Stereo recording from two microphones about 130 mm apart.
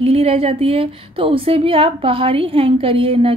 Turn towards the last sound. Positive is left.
turn(degrees=-45)  # may be behind; listen again after turning